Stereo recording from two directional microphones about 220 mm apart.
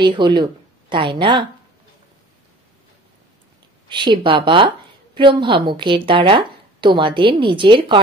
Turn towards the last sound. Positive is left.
turn(degrees=-20)  # may be behind; listen again after turning